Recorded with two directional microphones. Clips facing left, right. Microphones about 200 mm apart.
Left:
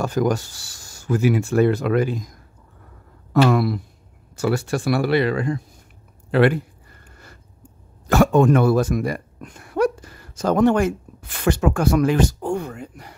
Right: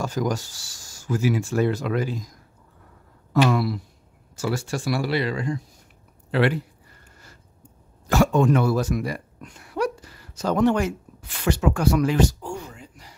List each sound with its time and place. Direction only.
0.0 s speech: 60° left (ahead or behind)
3.4 s speech: 55° left (ahead or behind)
8.1 s speech: 55° left (ahead or behind)